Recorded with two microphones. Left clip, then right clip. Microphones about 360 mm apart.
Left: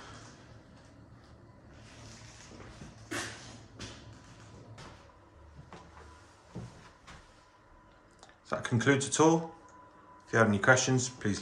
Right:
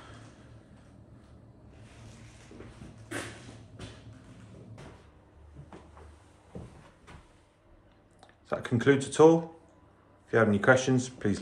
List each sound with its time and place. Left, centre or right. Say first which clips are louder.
8.2 s speech: right 1 dB; centre